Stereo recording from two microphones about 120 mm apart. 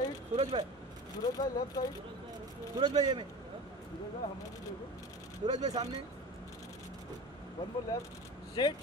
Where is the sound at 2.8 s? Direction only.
35° right (ahead or behind).